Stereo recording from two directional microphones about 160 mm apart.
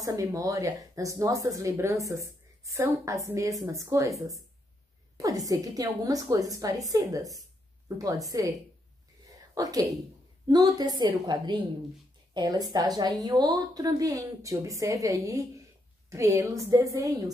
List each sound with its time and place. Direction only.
0.0 s speech: 20° right (ahead or behind)
5.1 s speech: 20° right (ahead or behind)
9.6 s speech: 20° right (ahead or behind)